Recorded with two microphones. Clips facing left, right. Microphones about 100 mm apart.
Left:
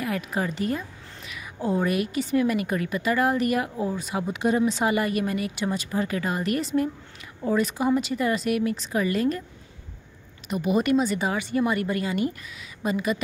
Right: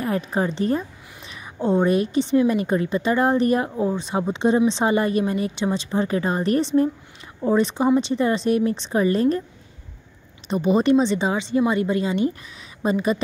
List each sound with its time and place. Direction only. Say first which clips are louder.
0.0 s a woman's voice: right 4 dB; 30° right (ahead or behind)
10.5 s a woman's voice: right 5 dB; 30° right (ahead or behind)